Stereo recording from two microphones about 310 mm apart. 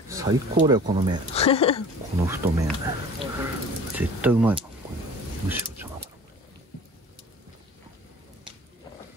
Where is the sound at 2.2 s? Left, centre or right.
Centre.